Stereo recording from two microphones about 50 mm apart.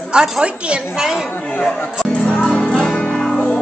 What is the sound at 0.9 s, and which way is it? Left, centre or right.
Speech, centre.